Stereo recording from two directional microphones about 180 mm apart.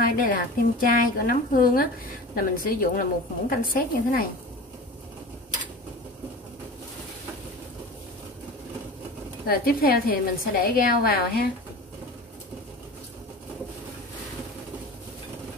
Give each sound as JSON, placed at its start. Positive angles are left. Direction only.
{"t": 0.0, "sound": "a woman's voice", "side_deg": 55}
{"t": 9.5, "sound": "a woman's voice", "side_deg": 55}